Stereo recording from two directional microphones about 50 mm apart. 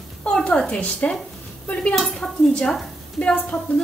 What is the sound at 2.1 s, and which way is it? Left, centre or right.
Speech, centre.